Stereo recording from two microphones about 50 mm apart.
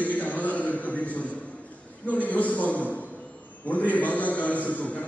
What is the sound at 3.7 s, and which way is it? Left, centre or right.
A man's voice, left.